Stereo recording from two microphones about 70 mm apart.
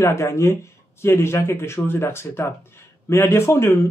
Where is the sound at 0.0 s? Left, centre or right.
Left.